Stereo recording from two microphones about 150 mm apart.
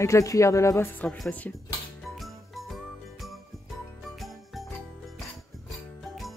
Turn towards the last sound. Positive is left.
turn(degrees=0)  # may be behind; listen again after turning